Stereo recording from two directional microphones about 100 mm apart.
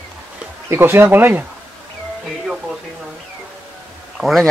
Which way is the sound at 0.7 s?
20° right (ahead or behind).